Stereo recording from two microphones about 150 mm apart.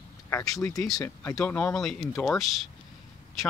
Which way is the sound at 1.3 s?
10° left (ahead or behind).